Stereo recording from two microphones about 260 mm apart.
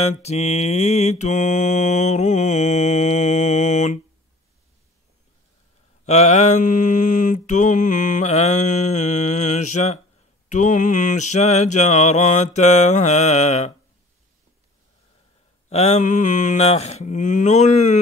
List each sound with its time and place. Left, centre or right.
0.0 s mantra: left
6.0 s mantra: left
15.7 s mantra: left